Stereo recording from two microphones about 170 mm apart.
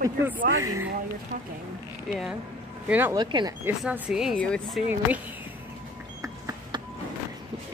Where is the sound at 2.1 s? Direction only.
Centre (ahead or behind).